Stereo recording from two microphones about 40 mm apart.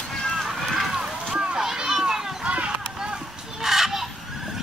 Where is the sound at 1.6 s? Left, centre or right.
Centre.